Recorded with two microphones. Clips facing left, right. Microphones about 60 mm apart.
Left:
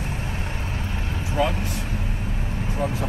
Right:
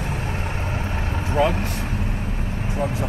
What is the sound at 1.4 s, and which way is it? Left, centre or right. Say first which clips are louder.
Speech: right 3 dB; right.